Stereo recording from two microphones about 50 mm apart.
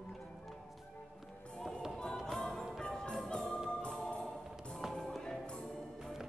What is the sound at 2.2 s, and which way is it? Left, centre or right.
Music, centre.